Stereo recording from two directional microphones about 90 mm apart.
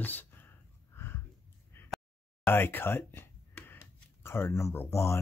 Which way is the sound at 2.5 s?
25° left (ahead or behind).